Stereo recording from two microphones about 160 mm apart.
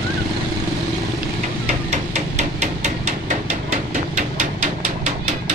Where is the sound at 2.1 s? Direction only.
45° right (ahead or behind).